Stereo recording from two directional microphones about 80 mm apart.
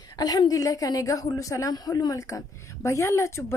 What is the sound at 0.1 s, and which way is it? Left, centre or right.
A woman's voice, left.